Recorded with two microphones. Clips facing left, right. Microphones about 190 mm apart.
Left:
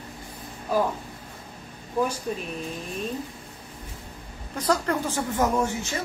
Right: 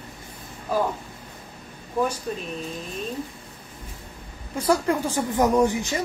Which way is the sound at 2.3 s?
5° left (ahead or behind).